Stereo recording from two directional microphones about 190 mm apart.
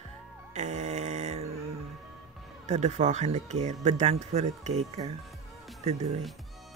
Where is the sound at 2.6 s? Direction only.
35° right (ahead or behind).